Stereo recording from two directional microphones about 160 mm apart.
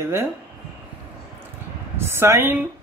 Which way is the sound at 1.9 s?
15° right (ahead or behind).